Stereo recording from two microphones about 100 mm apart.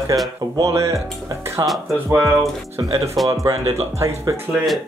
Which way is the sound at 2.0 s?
25° right (ahead or behind).